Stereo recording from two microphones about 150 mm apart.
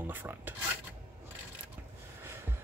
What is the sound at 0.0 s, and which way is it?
Speech, 15° right (ahead or behind).